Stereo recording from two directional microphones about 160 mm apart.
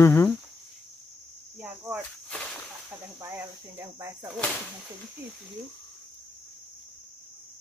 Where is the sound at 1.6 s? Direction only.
15° right (ahead or behind).